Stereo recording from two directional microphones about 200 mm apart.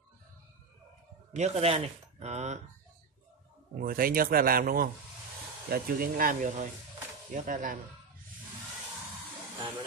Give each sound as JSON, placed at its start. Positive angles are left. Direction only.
{"t": 1.3, "sound": "speech", "side_deg": -35}
{"t": 3.8, "sound": "speech", "side_deg": -45}